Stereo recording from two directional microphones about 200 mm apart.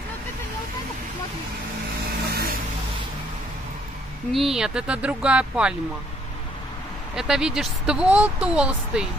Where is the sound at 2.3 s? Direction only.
45° right (ahead or behind).